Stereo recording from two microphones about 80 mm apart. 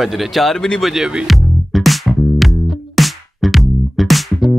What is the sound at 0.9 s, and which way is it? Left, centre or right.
Speech, centre.